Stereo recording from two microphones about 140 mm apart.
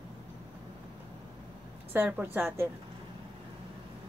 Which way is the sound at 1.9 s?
15° right (ahead or behind).